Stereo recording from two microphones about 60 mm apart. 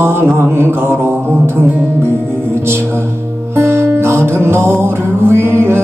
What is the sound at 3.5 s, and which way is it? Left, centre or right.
Music, right.